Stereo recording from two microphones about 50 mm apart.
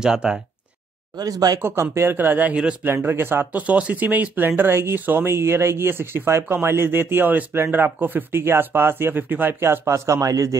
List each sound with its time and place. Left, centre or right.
0.0 s speech: centre
1.6 s speech: right
2.1 s speech: right
2.5 s speech: right
3.0 s speech: right
3.5 s speech: right
9.6 s speech: right